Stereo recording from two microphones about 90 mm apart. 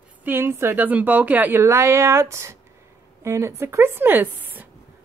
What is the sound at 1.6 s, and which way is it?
A woman's voice, 30° right (ahead or behind).